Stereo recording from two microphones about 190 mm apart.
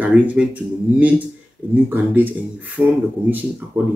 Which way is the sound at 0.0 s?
5° right (ahead or behind).